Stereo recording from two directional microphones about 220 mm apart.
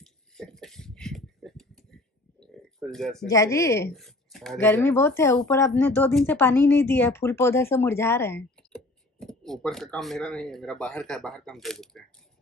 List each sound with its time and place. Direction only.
0.0 s a sound: centre (ahead or behind)
2.8 s speech: centre (ahead or behind)
3.3 s speech: 15° left (ahead or behind)
3.9 s speech: centre (ahead or behind)